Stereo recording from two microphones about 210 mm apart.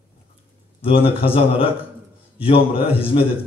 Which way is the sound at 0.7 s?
25° left (ahead or behind).